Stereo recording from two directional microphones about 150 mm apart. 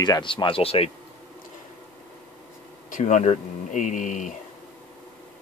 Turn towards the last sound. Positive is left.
turn(degrees=55)  # may be behind; listen again after turning